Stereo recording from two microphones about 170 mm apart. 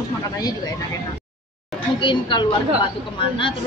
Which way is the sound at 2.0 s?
30° left (ahead or behind).